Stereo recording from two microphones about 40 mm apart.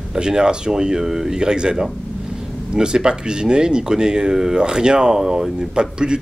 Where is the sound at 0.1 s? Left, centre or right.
Centre.